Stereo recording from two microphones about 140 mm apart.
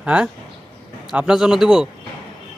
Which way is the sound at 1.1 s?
5° right (ahead or behind).